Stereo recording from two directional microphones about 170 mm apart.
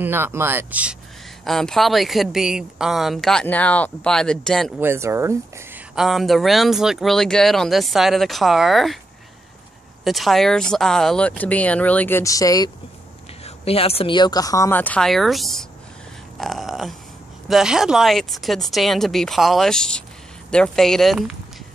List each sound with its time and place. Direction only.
0.0 s speech: 15° right (ahead or behind)
1.4 s speech: centre (ahead or behind)
4.7 s speech: 15° right (ahead or behind)
5.9 s speech: centre (ahead or behind)
10.0 s speech: centre (ahead or behind); by 12.7 s 20° left (ahead or behind)
13.4 s a woman's voice: 35° left (ahead or behind); by 21.4 s centre (ahead or behind)